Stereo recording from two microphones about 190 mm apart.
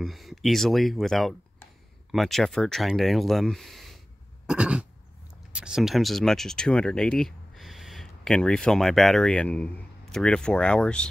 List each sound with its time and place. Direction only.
0.0 s speech: centre (ahead or behind)